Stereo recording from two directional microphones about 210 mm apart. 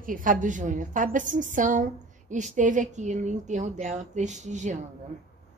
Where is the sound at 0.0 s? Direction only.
40° right (ahead or behind).